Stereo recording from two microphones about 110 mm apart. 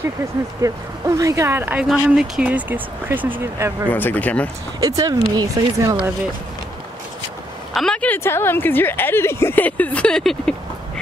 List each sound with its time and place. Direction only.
0.6 s speech: 30° right (ahead or behind)
3.9 s speech: 15° left (ahead or behind)
4.7 s speech: 30° right (ahead or behind)
7.7 s speech: 5° left (ahead or behind)
8.2 s speech: 20° left (ahead or behind); by 10.5 s 5° left (ahead or behind)